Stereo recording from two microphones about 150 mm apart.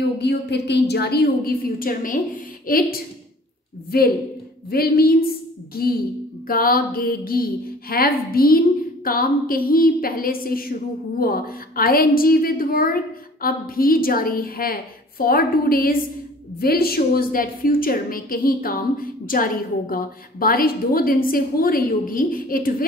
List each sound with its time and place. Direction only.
0.2 s a woman's voice: 90° left; by 3.0 s 70° left (ahead or behind)
3.9 s a woman's voice: 90° left
6.4 s a woman's voice: 75° left (ahead or behind)
16.5 s a woman's voice: 90° left; by 22.8 s 70° left (ahead or behind)